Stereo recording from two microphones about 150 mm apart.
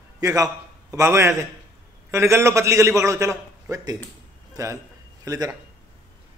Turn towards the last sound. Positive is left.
turn(degrees=-25)  # may be behind; listen again after turning